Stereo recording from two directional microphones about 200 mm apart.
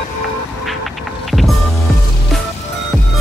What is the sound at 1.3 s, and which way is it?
Music, centre (ahead or behind).